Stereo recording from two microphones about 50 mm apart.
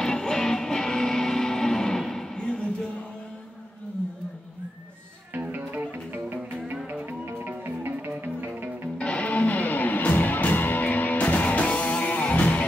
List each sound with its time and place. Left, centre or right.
0.0 s music: centre
5.3 s music: right
8.9 s music: left